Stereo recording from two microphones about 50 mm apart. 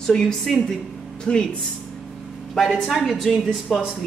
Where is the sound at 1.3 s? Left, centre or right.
Left.